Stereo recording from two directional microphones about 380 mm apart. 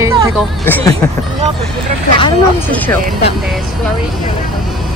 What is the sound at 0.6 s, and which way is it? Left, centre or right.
Speech, centre.